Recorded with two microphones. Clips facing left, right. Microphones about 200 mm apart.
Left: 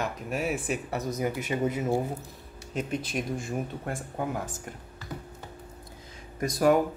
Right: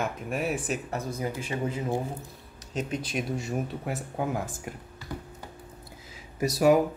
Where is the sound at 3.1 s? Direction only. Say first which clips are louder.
Right 1 dB; centre (ahead or behind).